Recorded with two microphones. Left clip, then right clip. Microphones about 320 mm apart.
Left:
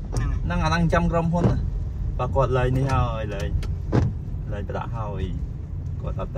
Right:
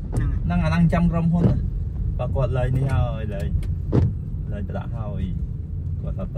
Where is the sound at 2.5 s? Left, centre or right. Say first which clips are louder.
Left 4 dB; left.